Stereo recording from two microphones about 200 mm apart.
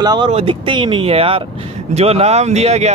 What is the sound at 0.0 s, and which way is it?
A man's voice, 20° right (ahead or behind).